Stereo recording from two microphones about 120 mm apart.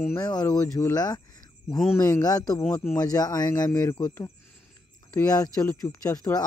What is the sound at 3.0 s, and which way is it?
Speech, 30° left (ahead or behind).